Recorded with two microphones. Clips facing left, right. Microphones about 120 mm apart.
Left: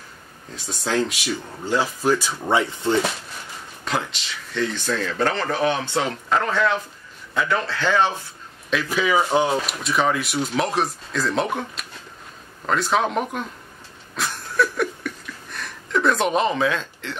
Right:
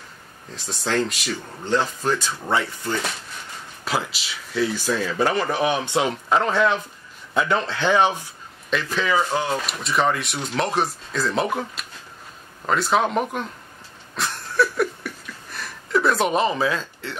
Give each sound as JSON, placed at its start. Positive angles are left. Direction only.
{"t": 0.6, "sound": "speech", "side_deg": 0}
{"t": 3.8, "sound": "a man's voice", "side_deg": -5}
{"t": 8.9, "sound": "speech", "side_deg": 10}
{"t": 9.7, "sound": "speech", "side_deg": 0}
{"t": 14.1, "sound": "a sound", "side_deg": 0}